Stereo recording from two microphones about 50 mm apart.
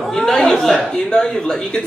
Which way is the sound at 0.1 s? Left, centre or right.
Centre.